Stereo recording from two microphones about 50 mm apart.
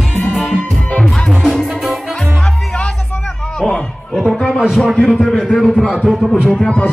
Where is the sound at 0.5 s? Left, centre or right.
Left.